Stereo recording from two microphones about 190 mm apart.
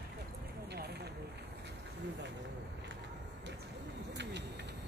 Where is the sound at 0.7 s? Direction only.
60° right (ahead or behind).